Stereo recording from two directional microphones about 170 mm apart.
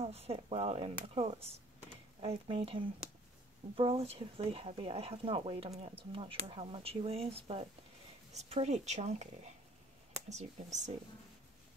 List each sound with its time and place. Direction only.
0.0 s speech: 35° right (ahead or behind)